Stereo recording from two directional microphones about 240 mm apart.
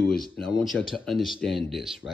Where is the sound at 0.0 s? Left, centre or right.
Centre.